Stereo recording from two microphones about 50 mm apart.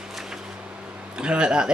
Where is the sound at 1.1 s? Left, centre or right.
Centre.